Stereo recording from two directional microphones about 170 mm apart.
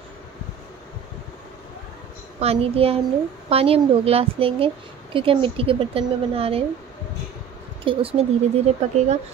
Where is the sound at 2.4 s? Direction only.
35° right (ahead or behind).